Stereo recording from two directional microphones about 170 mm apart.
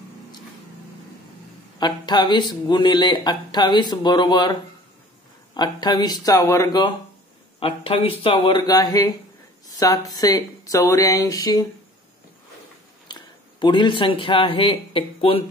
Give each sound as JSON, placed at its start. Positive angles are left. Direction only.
{"t": 1.8, "sound": "speech", "side_deg": 25}
{"t": 7.6, "sound": "speech", "side_deg": 30}
{"t": 13.1, "sound": "speech", "side_deg": 25}